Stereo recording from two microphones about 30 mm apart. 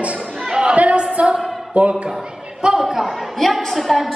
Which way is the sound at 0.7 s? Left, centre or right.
Right.